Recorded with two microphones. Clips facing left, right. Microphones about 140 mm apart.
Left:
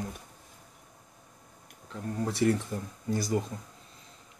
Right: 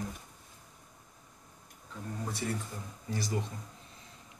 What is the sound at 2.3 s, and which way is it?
Speech, 90° left.